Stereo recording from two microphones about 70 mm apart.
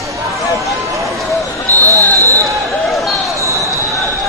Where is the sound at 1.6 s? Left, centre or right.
Left.